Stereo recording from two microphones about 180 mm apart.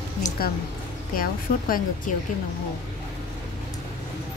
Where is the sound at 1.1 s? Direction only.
50° left (ahead or behind).